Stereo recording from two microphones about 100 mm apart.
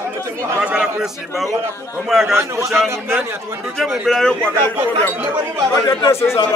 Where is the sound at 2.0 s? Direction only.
Centre (ahead or behind).